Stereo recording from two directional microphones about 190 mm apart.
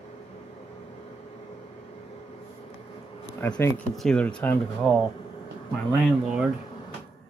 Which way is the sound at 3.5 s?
15° left (ahead or behind).